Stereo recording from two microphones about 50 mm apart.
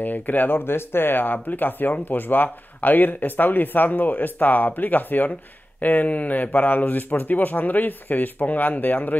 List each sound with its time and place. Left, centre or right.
0.0 s speech: left